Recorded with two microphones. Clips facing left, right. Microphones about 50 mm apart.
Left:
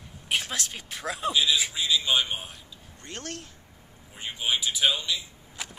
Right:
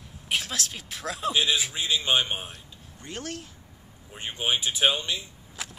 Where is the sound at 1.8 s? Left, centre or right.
Right.